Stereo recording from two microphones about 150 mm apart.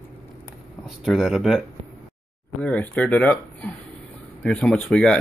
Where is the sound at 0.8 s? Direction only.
Centre (ahead or behind).